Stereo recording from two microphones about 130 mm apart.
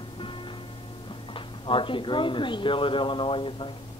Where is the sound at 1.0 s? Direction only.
40° left (ahead or behind).